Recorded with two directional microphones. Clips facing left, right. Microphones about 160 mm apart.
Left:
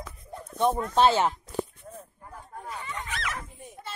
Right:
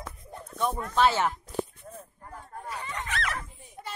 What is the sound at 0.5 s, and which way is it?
Speech, 30° left (ahead or behind).